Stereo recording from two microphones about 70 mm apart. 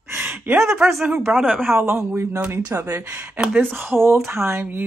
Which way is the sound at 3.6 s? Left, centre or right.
Right.